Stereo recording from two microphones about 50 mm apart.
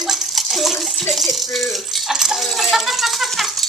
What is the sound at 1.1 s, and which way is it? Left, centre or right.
Rattle, centre.